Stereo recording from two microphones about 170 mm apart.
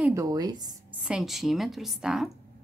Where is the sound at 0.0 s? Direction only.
20° right (ahead or behind).